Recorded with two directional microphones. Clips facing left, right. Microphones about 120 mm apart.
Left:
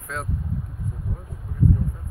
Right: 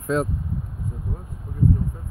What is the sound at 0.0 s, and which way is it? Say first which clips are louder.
Speech: right 10 dB; 20° right (ahead or behind).